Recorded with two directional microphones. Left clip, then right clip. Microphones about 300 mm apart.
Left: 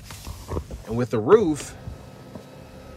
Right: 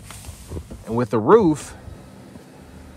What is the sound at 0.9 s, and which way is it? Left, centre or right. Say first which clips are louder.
Speech: right 3 dB; centre.